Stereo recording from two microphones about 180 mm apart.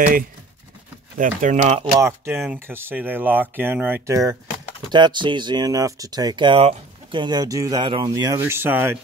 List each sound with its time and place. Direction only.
1.1 s speech: 45° right (ahead or behind)
2.0 s speech: 15° right (ahead or behind)